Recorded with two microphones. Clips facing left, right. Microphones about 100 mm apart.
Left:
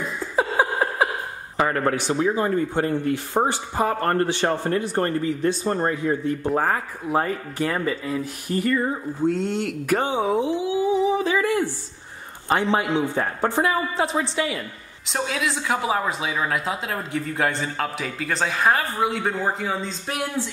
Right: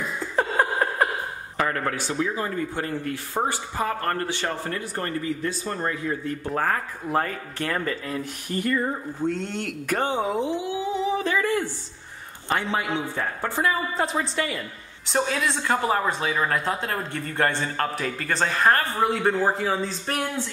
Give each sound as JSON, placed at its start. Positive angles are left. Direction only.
{"t": 0.2, "sound": "laughter", "side_deg": 5}
{"t": 1.6, "sound": "a man's voice", "side_deg": 25}
{"t": 6.5, "sound": "a man's voice", "side_deg": 10}
{"t": 13.9, "sound": "a woman's voice", "side_deg": 0}